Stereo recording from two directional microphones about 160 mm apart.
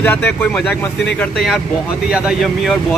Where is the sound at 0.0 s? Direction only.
10° left (ahead or behind).